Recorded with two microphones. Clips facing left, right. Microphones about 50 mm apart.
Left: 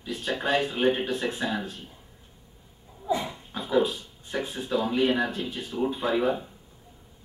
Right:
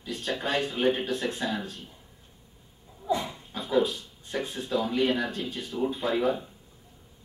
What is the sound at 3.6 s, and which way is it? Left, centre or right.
A man's voice, centre.